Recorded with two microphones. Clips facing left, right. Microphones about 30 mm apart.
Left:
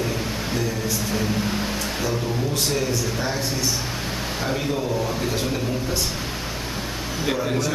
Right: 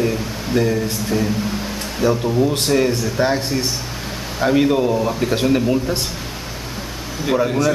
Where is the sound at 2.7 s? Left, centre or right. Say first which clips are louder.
Right 7 dB; right; by 5.3 s centre.